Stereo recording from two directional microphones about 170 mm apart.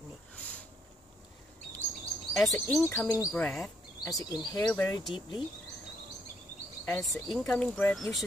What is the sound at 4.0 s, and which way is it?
Speech, 20° left (ahead or behind).